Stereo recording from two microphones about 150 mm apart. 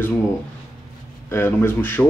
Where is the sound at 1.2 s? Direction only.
15° left (ahead or behind).